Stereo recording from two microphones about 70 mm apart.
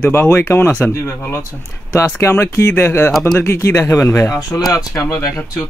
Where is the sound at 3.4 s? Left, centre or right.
Left.